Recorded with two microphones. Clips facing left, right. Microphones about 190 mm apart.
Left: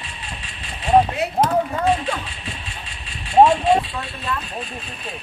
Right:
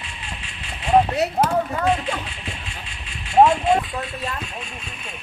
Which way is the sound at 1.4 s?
15° left (ahead or behind).